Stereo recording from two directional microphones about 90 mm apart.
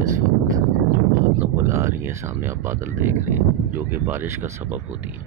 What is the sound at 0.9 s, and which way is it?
Speech, 30° right (ahead or behind).